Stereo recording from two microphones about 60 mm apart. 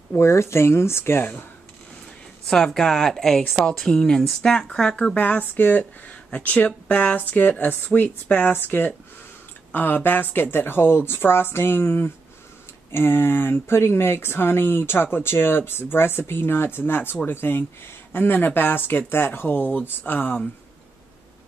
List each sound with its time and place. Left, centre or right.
0.1 s speech: left
2.4 s speech: centre
5.1 s speech: left